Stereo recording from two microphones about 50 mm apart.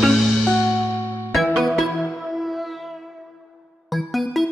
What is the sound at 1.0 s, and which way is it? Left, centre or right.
Music, left.